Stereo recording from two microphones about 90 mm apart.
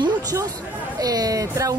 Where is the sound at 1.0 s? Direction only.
45° right (ahead or behind).